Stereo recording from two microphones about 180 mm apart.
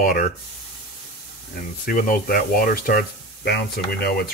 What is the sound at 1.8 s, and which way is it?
Speech, 50° left (ahead or behind).